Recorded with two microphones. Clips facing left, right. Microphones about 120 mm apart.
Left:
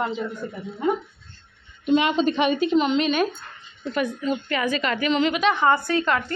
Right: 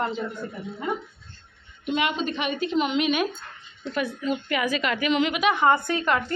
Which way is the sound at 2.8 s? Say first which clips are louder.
Right 1 dB; 10° right (ahead or behind).